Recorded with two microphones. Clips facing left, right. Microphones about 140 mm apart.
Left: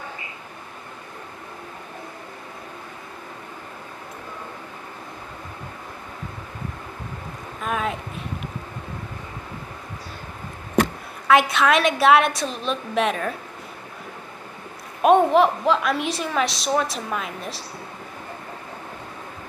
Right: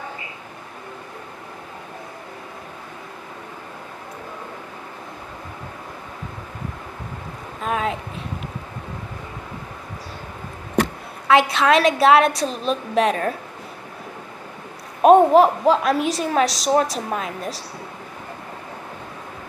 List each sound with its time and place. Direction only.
7.6 s a sound: 30° right (ahead or behind)
11.2 s a woman's voice: 30° right (ahead or behind)
15.0 s a woman's voice: 40° right (ahead or behind)